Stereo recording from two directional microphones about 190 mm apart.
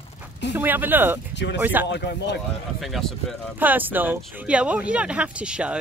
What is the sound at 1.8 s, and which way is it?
Speech, 65° left (ahead or behind).